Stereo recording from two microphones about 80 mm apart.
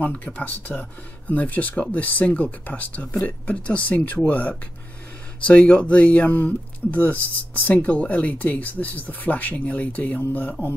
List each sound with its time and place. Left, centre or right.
0.0 s speech: centre